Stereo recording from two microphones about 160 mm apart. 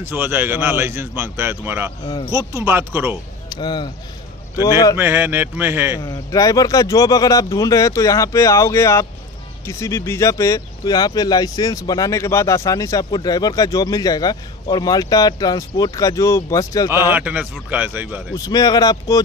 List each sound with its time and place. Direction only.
0.0 s a man's voice: 15° right (ahead or behind)
3.4 s speech: 25° left (ahead or behind)
4.9 s a man's voice: 15° right (ahead or behind)
5.9 s speech: 25° left (ahead or behind)
16.9 s a man's voice: 15° right (ahead or behind)
18.3 s speech: 25° left (ahead or behind)